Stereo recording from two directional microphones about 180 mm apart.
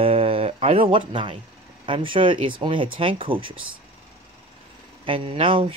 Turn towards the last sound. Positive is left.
turn(degrees=-30)  # may be behind; listen again after turning